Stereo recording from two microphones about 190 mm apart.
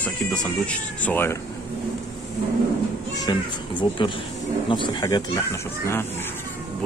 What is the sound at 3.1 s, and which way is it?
Speech, 20° left (ahead or behind).